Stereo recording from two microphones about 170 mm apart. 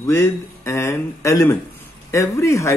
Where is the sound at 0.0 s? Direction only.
15° left (ahead or behind).